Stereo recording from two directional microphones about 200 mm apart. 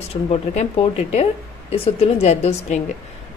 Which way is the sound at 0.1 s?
35° left (ahead or behind).